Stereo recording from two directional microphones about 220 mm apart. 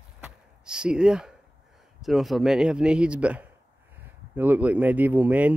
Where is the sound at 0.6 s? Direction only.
5° right (ahead or behind).